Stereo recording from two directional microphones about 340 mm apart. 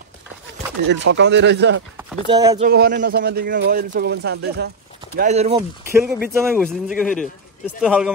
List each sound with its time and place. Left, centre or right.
0.8 s speech: right
2.0 s speech: centre
2.7 s speech: right
5.9 s a man's voice: centre